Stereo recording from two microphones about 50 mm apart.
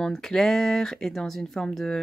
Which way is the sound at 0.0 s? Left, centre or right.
Centre.